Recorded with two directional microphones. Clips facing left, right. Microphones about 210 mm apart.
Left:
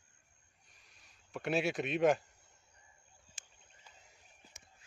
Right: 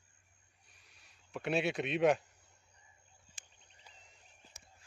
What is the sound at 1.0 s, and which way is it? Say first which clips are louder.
Speech: even; centre (ahead or behind).